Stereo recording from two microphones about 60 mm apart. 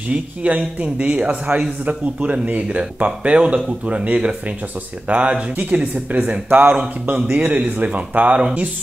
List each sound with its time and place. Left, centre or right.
0.1 s speech: right